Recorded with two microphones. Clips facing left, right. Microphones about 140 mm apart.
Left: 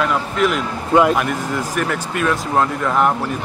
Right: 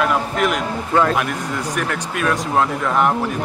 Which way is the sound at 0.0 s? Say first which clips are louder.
Even; centre (ahead or behind).